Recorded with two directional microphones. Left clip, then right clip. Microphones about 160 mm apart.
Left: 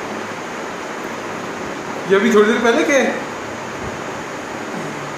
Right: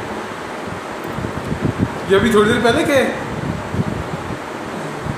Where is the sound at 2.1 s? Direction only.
5° right (ahead or behind).